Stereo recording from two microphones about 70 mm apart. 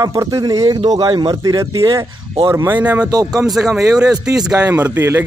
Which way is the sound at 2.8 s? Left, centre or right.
Right.